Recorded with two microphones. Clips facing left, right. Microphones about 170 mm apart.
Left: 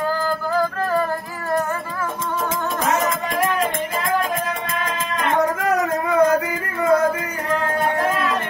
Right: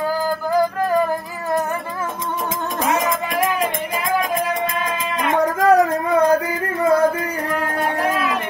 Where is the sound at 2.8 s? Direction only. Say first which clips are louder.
Right 2 dB; 10° right (ahead or behind).